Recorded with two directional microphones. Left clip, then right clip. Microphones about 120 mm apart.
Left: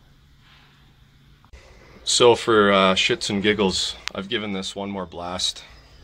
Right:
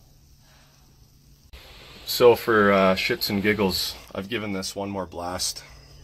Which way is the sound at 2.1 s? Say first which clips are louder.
Left 1 dB; 25° left (ahead or behind).